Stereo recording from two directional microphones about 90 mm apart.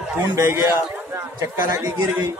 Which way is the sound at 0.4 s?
30° right (ahead or behind).